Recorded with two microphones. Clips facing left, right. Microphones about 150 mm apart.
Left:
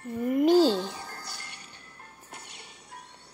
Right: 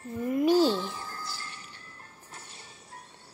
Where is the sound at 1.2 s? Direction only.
65° left (ahead or behind).